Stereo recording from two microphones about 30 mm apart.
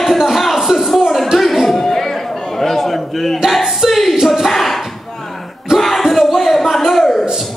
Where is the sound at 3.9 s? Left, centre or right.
Centre.